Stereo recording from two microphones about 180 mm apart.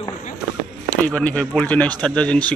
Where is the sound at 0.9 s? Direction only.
5° left (ahead or behind).